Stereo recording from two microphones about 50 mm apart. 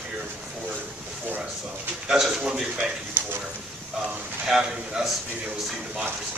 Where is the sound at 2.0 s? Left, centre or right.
Centre.